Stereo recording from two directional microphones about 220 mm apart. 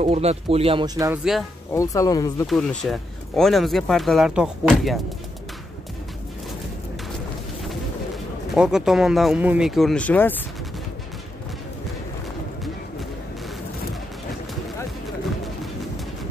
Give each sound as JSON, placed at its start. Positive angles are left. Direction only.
{"t": 0.0, "sound": "speech", "side_deg": -30}
{"t": 1.7, "sound": "speech", "side_deg": 15}
{"t": 2.4, "sound": "speech", "side_deg": 0}
{"t": 8.5, "sound": "speech", "side_deg": -5}